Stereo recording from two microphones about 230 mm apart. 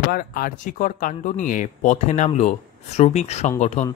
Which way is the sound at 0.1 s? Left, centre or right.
Left.